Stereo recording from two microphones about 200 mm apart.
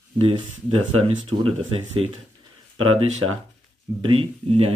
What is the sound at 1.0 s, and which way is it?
Speech, 30° right (ahead or behind).